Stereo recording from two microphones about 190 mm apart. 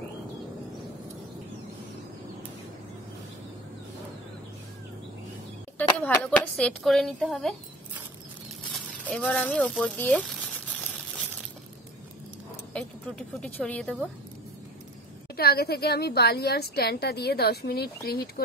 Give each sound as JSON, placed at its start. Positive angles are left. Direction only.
{"t": 5.8, "sound": "a woman's voice", "side_deg": 10}
{"t": 8.7, "sound": "a sound", "side_deg": 5}
{"t": 12.7, "sound": "a woman's voice", "side_deg": 5}
{"t": 15.3, "sound": "a woman's voice", "side_deg": 55}